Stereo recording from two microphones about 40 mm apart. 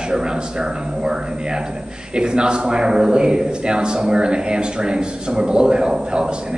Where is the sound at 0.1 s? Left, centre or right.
Centre.